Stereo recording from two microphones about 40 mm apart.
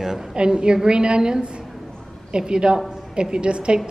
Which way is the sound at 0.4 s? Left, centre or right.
Right.